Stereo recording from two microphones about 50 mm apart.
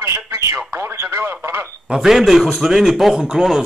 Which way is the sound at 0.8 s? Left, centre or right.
Right.